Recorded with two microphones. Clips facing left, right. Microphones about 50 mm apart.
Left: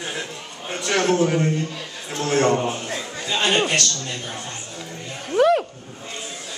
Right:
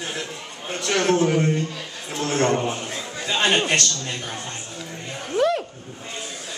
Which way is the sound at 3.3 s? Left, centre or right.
Right.